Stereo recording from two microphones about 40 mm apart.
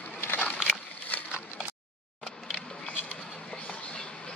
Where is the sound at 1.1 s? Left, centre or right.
Left.